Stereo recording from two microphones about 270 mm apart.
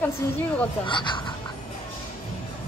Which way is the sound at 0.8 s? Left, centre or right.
Centre.